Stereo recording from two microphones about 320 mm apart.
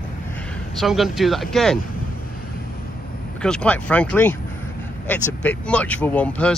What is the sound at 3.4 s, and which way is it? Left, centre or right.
Speech, centre.